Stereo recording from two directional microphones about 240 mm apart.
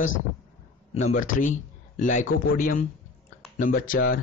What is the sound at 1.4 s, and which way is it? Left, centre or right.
A man's voice, left.